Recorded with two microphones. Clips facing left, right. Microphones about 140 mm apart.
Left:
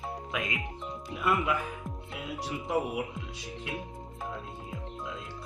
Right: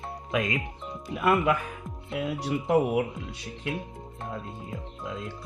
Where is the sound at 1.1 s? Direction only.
60° right (ahead or behind).